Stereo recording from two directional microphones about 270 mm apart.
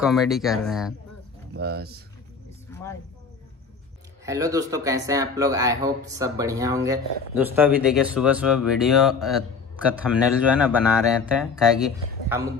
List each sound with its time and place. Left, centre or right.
0.0 s speech: centre
1.5 s speech: right
2.7 s a sound: centre
4.3 s speech: centre